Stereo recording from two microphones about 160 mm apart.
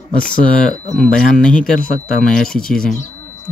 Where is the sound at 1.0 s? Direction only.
5° left (ahead or behind).